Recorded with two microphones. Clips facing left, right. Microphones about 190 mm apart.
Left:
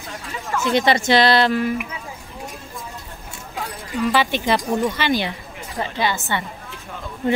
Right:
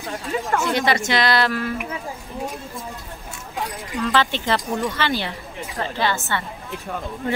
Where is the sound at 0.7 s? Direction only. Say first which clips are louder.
Left 9 dB; 30° left (ahead or behind).